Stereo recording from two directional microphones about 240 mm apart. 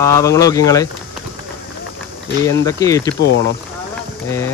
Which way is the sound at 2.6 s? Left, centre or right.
Centre.